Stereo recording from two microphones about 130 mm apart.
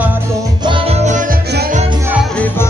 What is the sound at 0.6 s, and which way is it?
Music, 40° right (ahead or behind).